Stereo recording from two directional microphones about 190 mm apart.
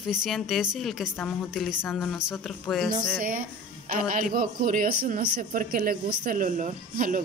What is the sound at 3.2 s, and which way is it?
Speech, 45° right (ahead or behind).